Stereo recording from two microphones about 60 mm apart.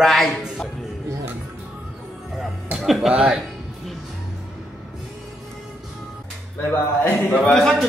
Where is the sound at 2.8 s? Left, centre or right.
Centre.